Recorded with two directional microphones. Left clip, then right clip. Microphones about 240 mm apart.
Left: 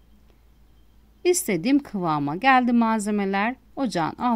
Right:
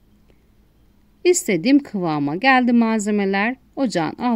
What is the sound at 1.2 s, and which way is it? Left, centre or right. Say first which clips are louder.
Speech: right 5 dB; left.